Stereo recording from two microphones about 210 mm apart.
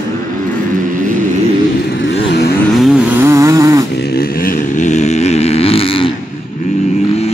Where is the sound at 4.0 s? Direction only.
45° left (ahead or behind); by 6.1 s 25° left (ahead or behind).